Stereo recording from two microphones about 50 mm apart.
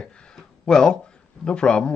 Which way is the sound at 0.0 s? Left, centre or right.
Centre.